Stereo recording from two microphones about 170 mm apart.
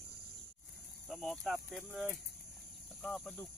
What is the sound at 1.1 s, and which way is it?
Speech, centre (ahead or behind).